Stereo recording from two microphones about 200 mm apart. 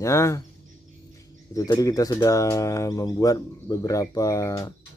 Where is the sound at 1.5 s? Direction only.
20° left (ahead or behind).